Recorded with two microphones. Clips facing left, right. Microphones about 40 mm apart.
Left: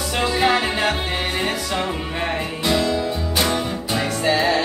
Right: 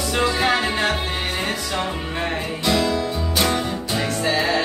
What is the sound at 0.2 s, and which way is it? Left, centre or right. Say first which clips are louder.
Music: left 1 dB; centre.